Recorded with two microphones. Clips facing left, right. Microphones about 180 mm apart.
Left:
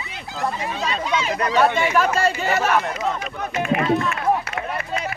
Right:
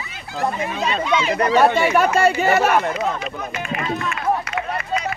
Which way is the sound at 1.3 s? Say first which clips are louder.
Right 3 dB; 45° right (ahead or behind).